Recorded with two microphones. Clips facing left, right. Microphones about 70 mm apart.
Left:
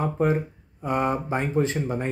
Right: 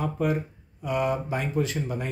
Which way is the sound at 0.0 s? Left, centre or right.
Left.